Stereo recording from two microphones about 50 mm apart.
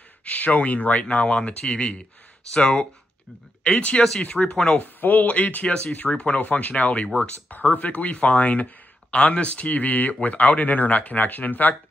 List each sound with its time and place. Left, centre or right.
0.2 s speech: left
1.0 s speech: left
4.7 s speech: left
5.7 s speech: left